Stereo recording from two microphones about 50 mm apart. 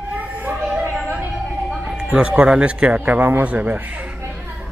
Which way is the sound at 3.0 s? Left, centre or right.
Right.